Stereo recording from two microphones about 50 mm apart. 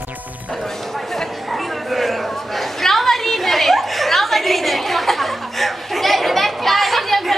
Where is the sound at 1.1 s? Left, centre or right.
Centre.